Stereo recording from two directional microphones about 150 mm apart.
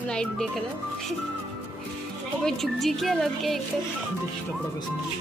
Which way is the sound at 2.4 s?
Centre (ahead or behind).